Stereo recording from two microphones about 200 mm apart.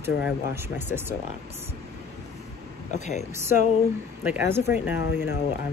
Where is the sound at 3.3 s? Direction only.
10° right (ahead or behind).